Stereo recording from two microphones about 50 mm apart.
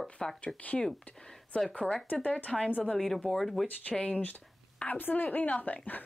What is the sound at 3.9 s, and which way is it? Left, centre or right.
Speech, centre.